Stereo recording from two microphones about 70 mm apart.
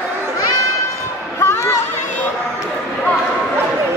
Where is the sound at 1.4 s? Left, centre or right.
Left.